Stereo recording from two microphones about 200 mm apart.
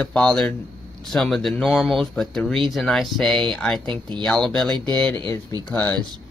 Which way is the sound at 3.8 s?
25° right (ahead or behind).